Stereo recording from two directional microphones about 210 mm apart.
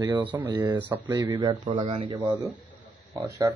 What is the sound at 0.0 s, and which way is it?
Speech, 20° right (ahead or behind).